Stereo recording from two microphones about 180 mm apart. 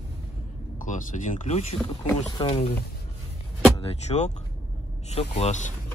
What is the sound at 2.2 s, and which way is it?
Speech, 25° left (ahead or behind).